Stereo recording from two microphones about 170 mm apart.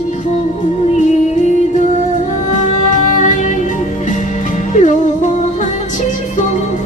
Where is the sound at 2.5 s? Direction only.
45° left (ahead or behind).